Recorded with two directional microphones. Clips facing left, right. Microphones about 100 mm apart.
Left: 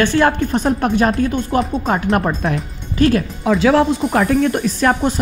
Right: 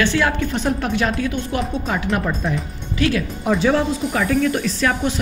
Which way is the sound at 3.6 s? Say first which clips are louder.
Left 6 dB; 70° left (ahead or behind).